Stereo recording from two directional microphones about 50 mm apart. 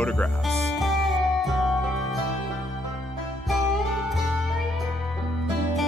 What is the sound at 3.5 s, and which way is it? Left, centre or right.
Music, centre.